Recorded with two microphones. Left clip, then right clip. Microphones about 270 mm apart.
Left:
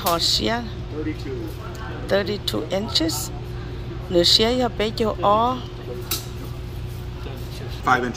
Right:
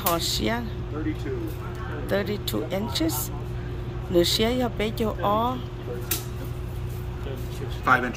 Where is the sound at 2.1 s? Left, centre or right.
Centre.